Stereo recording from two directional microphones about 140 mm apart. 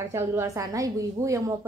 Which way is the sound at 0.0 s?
20° right (ahead or behind).